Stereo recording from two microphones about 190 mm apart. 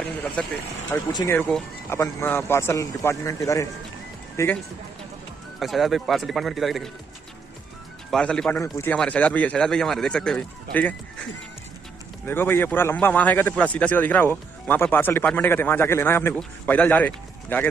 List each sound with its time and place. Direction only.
0.9 s speech: 15° left (ahead or behind)
5.6 s speech: centre (ahead or behind)
8.1 s speech: 5° left (ahead or behind)
12.3 s speech: 10° left (ahead or behind)